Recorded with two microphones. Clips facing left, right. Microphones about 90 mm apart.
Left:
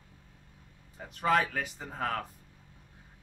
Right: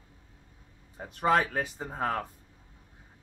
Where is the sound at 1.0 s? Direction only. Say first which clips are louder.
Right 2 dB; 20° right (ahead or behind).